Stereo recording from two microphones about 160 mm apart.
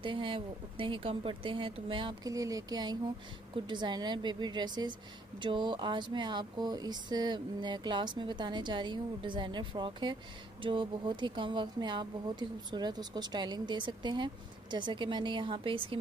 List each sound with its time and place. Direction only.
0.0 s speech: 30° right (ahead or behind)